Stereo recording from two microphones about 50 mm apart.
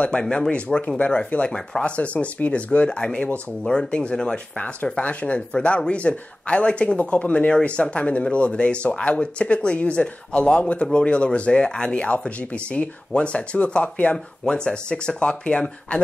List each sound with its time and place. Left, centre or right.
0.2 s speech: centre
14.1 s speech: centre